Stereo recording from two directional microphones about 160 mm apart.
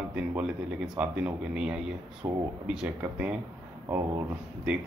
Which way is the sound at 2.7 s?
5° right (ahead or behind).